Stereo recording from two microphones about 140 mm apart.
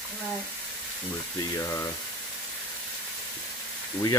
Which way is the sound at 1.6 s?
20° left (ahead or behind).